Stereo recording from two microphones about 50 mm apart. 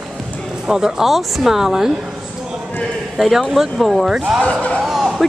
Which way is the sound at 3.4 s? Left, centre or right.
Centre.